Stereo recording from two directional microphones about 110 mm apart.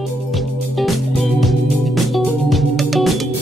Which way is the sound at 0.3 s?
Centre (ahead or behind).